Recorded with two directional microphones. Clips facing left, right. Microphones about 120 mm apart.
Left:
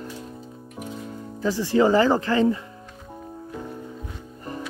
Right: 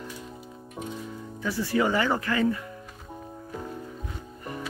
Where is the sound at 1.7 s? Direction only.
30° left (ahead or behind).